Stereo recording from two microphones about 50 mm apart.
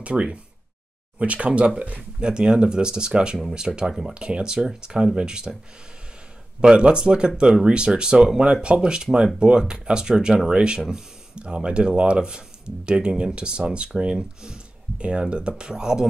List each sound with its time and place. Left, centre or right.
0.0 s speech: right
6.6 s speech: centre